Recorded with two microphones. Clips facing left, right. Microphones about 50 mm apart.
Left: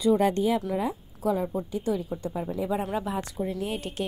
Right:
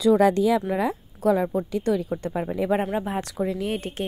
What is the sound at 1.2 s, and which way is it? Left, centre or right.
Speech, right.